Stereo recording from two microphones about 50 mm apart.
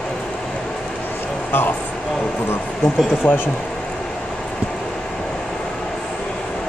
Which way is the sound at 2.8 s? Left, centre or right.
Left.